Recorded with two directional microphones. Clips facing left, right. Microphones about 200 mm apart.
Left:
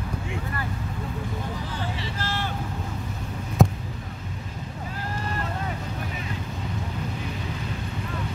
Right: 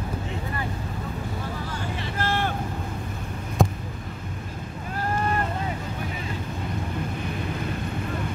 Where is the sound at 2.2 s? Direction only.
55° right (ahead or behind).